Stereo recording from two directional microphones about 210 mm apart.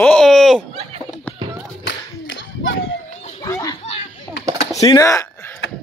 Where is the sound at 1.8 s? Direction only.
65° left (ahead or behind).